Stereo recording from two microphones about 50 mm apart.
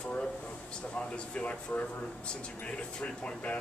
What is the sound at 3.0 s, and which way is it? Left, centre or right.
Speech, centre.